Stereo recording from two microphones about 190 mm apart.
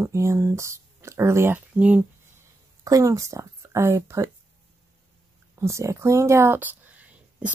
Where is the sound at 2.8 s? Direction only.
20° right (ahead or behind).